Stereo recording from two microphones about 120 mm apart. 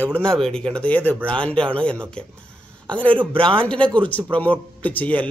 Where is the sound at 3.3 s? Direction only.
50° right (ahead or behind).